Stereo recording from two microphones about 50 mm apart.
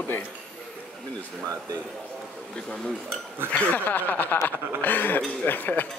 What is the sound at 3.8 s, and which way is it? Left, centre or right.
Speech, left.